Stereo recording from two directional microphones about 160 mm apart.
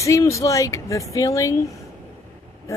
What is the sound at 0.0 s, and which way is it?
Speech, 20° left (ahead or behind).